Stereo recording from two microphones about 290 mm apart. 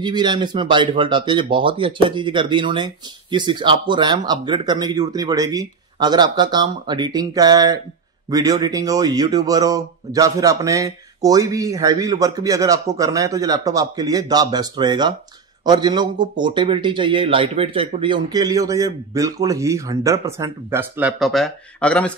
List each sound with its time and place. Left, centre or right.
0.0 s speech: centre